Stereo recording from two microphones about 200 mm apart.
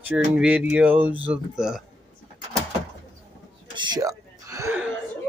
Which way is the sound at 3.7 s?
20° right (ahead or behind).